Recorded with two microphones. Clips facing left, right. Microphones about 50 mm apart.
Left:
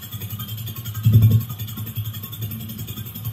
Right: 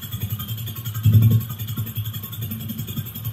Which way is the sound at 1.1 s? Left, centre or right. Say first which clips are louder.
Even; right.